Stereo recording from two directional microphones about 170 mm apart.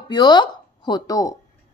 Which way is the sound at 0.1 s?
25° left (ahead or behind).